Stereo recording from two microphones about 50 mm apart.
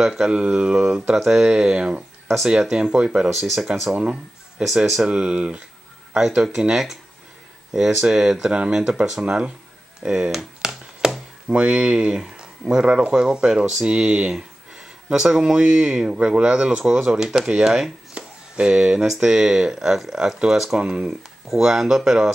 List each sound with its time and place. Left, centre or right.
0.0 s speech: centre
0.3 s speech: right
2.2 s speech: centre
2.7 s speech: centre
3.3 s speech: centre
3.9 s speech: centre
10.3 s a sound: centre
11.4 s speech: right